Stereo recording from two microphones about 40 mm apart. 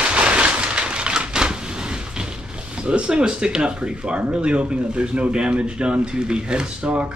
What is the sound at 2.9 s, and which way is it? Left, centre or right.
Speech, right.